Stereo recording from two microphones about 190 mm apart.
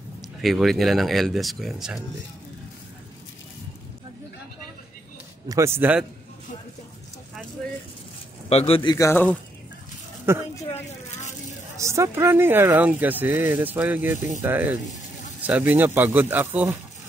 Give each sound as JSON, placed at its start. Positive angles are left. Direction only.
{"t": 0.4, "sound": "speech", "side_deg": 0}
{"t": 5.5, "sound": "speech", "side_deg": -15}
{"t": 8.5, "sound": "a man's voice", "side_deg": 30}
{"t": 8.9, "sound": "speech", "side_deg": 15}
{"t": 10.3, "sound": "speech", "side_deg": -15}
{"t": 11.8, "sound": "speech", "side_deg": -15}